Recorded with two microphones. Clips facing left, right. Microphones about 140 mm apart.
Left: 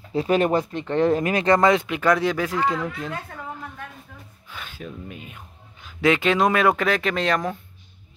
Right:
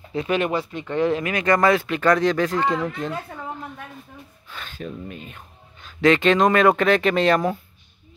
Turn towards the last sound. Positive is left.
turn(degrees=-5)  # may be behind; listen again after turning